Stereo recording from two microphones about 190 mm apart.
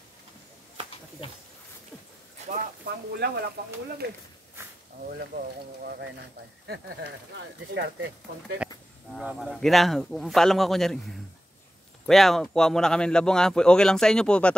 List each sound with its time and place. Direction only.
2.5 s speech: 50° right (ahead or behind)
9.1 s speech: centre (ahead or behind)